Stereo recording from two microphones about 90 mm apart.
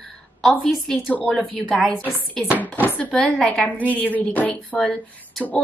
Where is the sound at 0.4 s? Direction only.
Centre (ahead or behind); by 3.1 s 20° left (ahead or behind).